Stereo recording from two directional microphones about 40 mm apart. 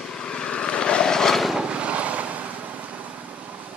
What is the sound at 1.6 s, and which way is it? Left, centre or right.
Vehicle, right.